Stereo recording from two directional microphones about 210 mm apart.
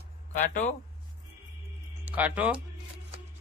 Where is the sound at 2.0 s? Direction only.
5° right (ahead or behind).